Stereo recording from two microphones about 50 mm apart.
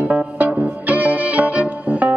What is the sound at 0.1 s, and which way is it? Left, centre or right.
Music, right.